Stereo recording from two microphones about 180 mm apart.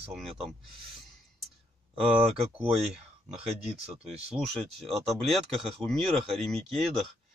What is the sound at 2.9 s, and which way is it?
Speech, 5° right (ahead or behind).